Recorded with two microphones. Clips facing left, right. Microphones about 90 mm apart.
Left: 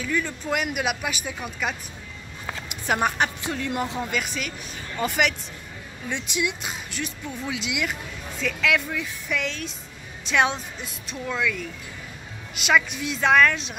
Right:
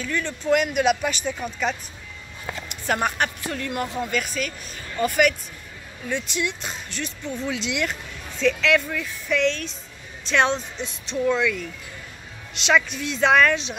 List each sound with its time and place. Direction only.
0.0 s speech: 10° left (ahead or behind)
12.6 s speech: 10° left (ahead or behind)